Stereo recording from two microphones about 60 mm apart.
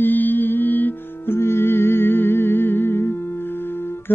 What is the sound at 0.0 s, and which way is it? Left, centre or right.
Music, left.